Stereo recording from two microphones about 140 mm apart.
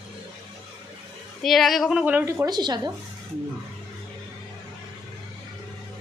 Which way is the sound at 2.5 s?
30° right (ahead or behind).